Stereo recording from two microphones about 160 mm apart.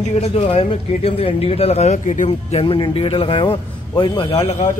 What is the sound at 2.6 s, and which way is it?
A man's voice, 35° left (ahead or behind).